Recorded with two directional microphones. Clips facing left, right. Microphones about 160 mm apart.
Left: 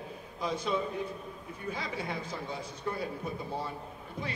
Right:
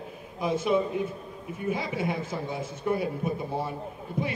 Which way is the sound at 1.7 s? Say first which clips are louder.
Right 7 dB; 20° right (ahead or behind).